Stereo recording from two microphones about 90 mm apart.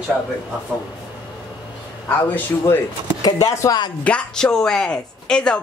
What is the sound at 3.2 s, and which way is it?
Speech, 45° left (ahead or behind).